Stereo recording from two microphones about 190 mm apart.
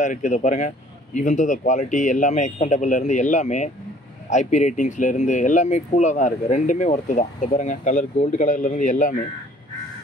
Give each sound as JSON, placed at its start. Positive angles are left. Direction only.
{"t": 0.0, "sound": "speech", "side_deg": 40}